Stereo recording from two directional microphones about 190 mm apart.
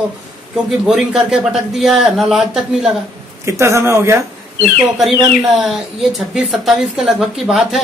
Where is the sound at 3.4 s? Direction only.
15° right (ahead or behind).